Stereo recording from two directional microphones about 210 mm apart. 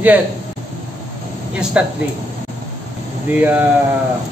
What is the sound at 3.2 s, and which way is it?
Speech, 10° right (ahead or behind).